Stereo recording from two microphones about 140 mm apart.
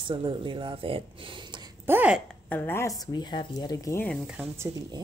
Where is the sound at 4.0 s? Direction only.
5° left (ahead or behind).